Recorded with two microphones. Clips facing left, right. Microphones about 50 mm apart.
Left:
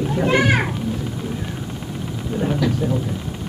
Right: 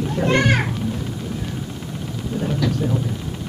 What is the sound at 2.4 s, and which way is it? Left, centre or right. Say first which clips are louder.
Speech: left 3 dB; centre.